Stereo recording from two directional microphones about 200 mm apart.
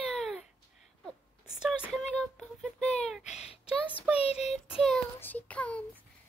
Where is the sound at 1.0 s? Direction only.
5° right (ahead or behind).